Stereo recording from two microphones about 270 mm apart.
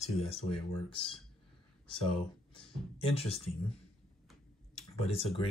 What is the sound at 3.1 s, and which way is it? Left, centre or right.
Speech, left.